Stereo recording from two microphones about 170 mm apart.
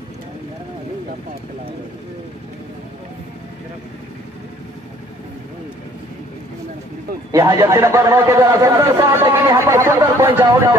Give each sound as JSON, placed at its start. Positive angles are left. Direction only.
{"t": 7.2, "sound": "a man's voice", "side_deg": -20}